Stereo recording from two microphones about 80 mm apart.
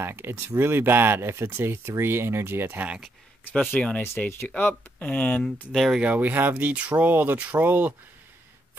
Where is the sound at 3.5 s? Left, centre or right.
Centre.